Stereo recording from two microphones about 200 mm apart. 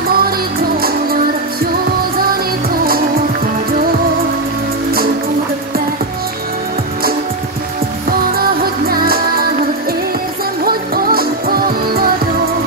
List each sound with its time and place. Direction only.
0.1 s music: 50° right (ahead or behind)
8.2 s music: 50° right (ahead or behind)
10.6 s music: 45° right (ahead or behind)